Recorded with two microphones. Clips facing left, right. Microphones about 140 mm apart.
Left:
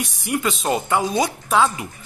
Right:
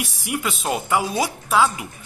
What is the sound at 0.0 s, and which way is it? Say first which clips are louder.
Speech: left 3 dB; 5° right (ahead or behind).